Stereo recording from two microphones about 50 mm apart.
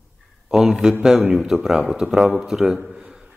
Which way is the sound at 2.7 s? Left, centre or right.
Centre.